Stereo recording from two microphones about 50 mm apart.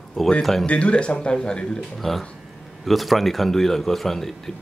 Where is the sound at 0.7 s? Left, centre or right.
Left.